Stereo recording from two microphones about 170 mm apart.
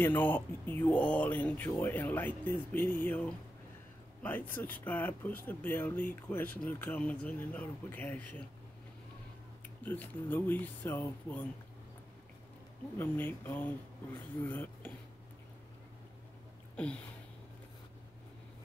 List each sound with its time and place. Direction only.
0.0 s speech: 10° left (ahead or behind)
9.8 s speech: 10° left (ahead or behind)
12.9 s speech: 10° left (ahead or behind)
16.7 s a sound: 5° left (ahead or behind)